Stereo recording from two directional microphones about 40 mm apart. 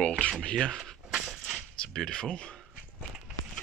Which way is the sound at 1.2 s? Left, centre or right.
Centre.